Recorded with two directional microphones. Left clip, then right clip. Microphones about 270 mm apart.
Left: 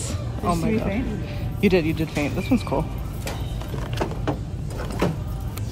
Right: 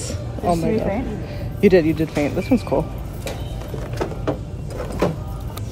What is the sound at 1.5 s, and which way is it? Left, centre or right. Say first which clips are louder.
Speech: right 6 dB; centre.